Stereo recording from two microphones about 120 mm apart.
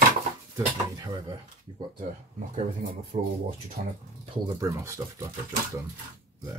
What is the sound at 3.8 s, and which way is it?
Speech, 90° right.